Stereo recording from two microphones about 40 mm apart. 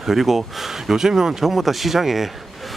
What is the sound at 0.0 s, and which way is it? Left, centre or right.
Speech, centre.